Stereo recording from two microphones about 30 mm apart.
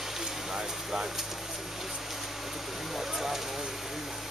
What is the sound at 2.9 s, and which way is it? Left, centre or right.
Vehicle, centre.